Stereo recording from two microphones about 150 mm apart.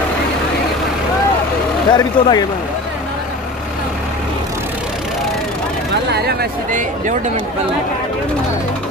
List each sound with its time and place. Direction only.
1.9 s speech: 30° left (ahead or behind)
6.1 s speech: 90° right